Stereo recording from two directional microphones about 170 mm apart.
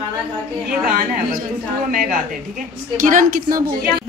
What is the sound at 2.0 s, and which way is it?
A woman's voice, 55° right (ahead or behind).